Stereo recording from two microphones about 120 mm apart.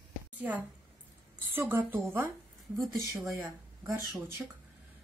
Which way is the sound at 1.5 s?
20° right (ahead or behind).